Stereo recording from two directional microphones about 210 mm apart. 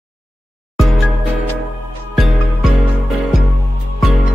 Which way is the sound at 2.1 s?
Centre (ahead or behind).